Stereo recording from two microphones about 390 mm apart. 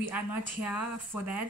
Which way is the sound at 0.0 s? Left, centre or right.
Centre.